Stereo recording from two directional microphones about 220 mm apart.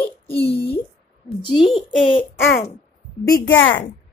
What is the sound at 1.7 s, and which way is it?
Speech, 25° left (ahead or behind).